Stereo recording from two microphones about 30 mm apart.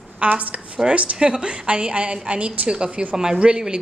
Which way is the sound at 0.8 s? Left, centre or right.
Right.